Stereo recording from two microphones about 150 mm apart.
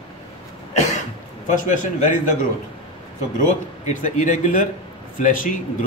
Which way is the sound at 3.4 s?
55° left (ahead or behind).